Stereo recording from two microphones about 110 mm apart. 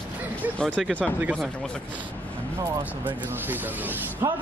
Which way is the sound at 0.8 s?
5° left (ahead or behind).